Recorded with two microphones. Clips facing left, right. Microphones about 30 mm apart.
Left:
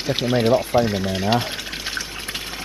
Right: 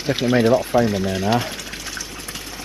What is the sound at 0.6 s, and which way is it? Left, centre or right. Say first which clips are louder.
Water: right 1 dB; left.